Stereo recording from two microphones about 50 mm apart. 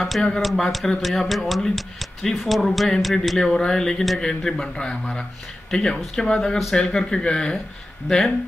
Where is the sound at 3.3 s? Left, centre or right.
Centre.